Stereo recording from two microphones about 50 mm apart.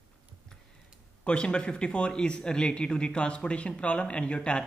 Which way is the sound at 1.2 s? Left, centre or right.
Centre.